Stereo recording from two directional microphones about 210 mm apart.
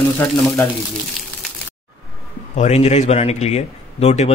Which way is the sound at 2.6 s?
30° left (ahead or behind).